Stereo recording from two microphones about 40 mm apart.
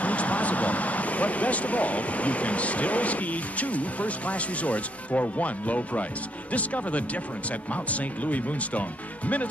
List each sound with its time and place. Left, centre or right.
0.0 s speech: left